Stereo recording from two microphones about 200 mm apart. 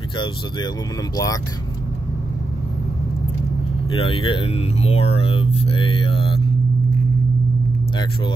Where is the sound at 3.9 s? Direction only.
25° left (ahead or behind).